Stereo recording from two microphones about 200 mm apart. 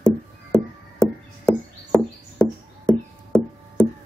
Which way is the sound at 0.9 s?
5° left (ahead or behind).